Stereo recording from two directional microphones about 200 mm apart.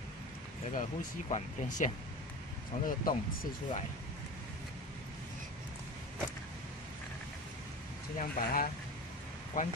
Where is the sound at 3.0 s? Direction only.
45° left (ahead or behind).